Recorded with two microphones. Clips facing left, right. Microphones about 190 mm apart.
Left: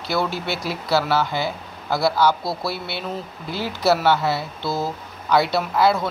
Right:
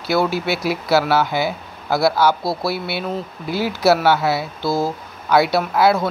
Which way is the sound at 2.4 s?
30° right (ahead or behind).